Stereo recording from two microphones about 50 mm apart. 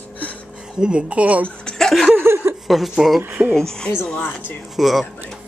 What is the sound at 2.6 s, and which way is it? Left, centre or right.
Speech, centre.